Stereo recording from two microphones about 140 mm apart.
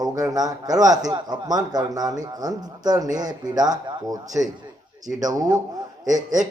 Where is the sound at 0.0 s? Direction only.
25° right (ahead or behind).